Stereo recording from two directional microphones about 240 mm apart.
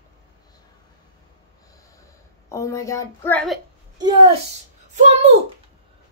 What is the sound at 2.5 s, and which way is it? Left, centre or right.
A woman's voice, centre.